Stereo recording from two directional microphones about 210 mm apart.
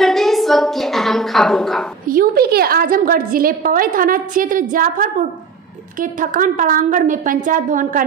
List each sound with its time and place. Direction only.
0.0 s a woman's voice: centre (ahead or behind)
2.0 s a woman's voice: 45° right (ahead or behind)